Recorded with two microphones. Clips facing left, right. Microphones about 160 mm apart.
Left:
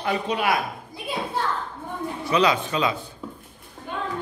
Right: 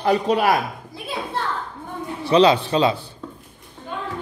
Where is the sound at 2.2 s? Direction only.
30° right (ahead or behind).